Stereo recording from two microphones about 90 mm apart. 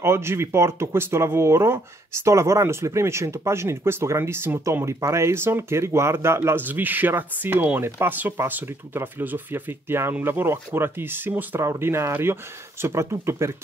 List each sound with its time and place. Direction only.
0.0 s speech: 30° right (ahead or behind)